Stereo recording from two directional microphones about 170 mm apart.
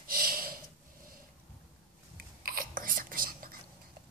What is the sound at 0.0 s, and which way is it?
Snort, 60° right (ahead or behind).